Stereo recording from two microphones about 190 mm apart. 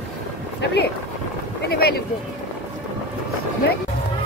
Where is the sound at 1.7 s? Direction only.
55° left (ahead or behind).